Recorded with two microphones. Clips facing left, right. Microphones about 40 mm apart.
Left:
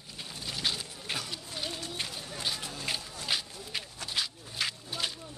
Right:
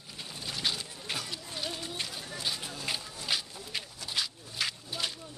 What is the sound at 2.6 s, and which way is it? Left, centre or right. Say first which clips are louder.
Run: even; centre.